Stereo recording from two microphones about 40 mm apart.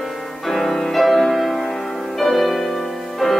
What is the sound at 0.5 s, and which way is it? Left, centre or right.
Music, centre.